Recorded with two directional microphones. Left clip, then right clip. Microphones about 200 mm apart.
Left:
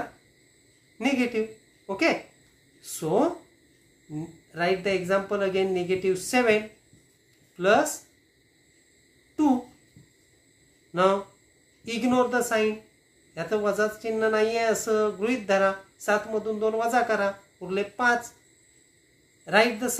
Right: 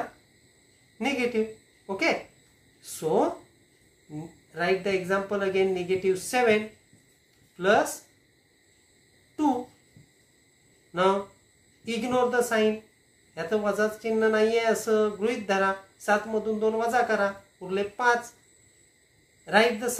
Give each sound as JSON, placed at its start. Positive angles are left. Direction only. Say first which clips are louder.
{"t": 0.9, "sound": "a woman's voice", "louder": "left 1 dB", "side_deg": 20}
{"t": 4.5, "sound": "speech", "louder": "left 1 dB", "side_deg": 20}
{"t": 11.8, "sound": "speech", "louder": "left 1 dB", "side_deg": 20}
{"t": 19.4, "sound": "speech", "louder": "even", "side_deg": 20}